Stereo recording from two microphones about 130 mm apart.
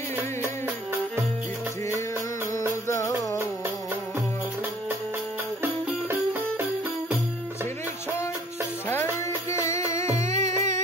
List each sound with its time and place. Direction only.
2.9 s music: 25° left (ahead or behind)
5.6 s music: 20° right (ahead or behind)
9.5 s music: 20° left (ahead or behind)